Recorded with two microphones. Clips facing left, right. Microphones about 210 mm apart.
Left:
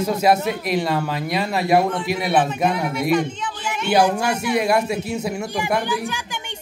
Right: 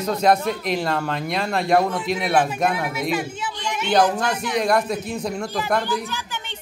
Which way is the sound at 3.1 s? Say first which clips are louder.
Left 5 dB; 5° right (ahead or behind).